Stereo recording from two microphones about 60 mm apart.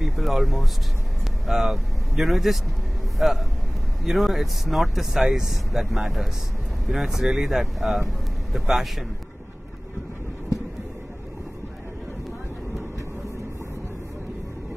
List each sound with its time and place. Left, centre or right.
0.0 s a sound: centre
1.5 s speech: centre
4.0 s speech: centre